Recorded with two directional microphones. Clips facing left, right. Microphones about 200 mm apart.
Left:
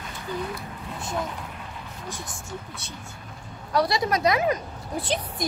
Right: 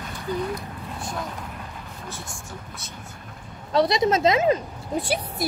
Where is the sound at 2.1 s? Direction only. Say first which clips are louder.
Left 4 dB; 15° left (ahead or behind).